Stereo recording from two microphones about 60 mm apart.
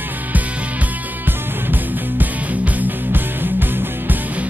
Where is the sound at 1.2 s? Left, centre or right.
Right.